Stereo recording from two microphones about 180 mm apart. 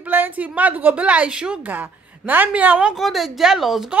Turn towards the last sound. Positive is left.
turn(degrees=0)  # may be behind; listen again after turning